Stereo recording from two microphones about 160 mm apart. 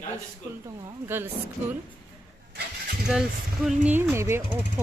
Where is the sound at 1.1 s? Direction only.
15° right (ahead or behind).